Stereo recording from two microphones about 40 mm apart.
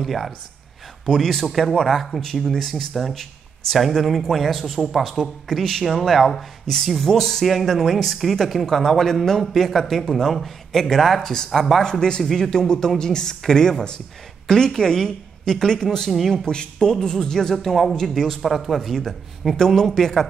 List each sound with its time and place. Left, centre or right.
0.0 s a man's voice: centre
9.4 s a man's voice: centre
12.2 s speech: centre
12.4 s a man's voice: centre
16.4 s speech: centre